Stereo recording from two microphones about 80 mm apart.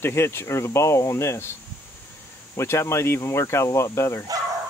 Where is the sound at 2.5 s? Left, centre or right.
Left.